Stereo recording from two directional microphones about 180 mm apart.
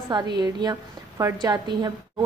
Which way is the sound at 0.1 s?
25° right (ahead or behind).